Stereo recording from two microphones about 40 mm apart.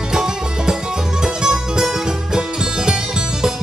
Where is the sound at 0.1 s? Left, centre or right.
Centre.